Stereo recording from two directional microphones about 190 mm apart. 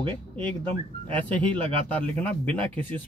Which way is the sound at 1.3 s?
10° left (ahead or behind).